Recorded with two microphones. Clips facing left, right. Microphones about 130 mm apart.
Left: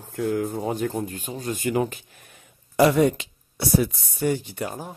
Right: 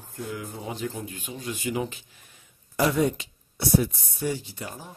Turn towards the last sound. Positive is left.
turn(degrees=55)  # may be behind; listen again after turning